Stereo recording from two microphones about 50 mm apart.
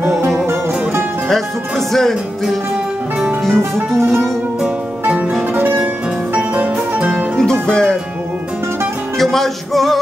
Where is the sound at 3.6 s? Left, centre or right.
Right.